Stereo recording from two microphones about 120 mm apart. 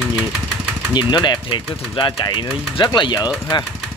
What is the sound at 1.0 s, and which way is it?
Speech, 40° left (ahead or behind).